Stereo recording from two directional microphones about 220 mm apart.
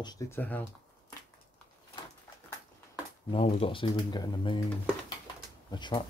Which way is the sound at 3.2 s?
25° left (ahead or behind).